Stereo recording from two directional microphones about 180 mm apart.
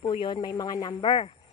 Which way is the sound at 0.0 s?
25° left (ahead or behind).